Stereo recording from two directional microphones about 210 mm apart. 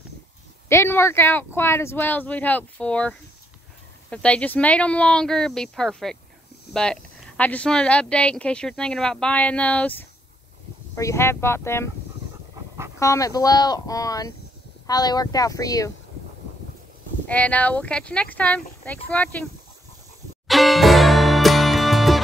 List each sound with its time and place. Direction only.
0.7 s speech: 10° left (ahead or behind)
13.0 s speech: 15° left (ahead or behind)
17.3 s speech: 5° left (ahead or behind)
20.4 s music: centre (ahead or behind)